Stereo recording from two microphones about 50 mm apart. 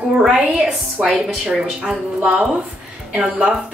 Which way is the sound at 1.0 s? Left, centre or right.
Centre.